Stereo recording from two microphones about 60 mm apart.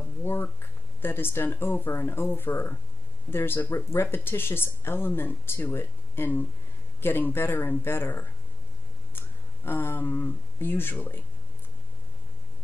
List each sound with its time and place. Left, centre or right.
0.2 s speech: left
9.7 s speech: left